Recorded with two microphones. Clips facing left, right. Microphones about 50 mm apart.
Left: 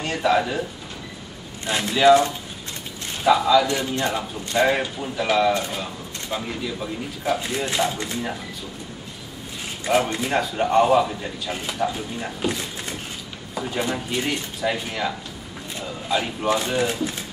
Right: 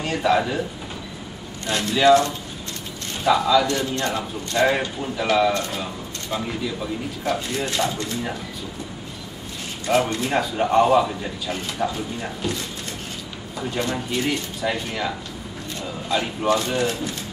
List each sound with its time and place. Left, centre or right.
0.0 s speech: centre
1.7 s speech: centre
9.8 s speech: centre
12.4 s speech: centre
15.8 s a sound: centre
16.4 s speech: centre